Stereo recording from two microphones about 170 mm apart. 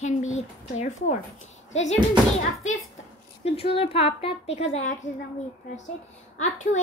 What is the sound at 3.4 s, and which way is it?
A woman's voice, 35° left (ahead or behind).